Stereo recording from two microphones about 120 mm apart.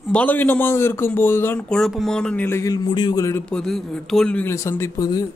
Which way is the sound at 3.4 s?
5° left (ahead or behind).